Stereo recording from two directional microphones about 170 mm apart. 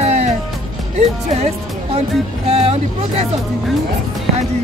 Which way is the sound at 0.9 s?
40° right (ahead or behind).